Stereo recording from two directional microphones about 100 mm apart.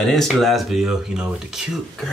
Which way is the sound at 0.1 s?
Centre (ahead or behind).